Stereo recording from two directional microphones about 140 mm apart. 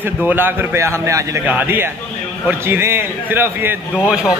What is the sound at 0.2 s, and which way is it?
Speech, 15° right (ahead or behind).